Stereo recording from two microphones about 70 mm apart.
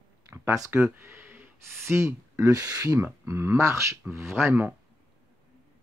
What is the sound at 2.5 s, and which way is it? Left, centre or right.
Speech, right.